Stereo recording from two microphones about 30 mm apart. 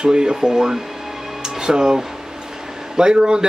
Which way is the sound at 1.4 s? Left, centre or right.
Right.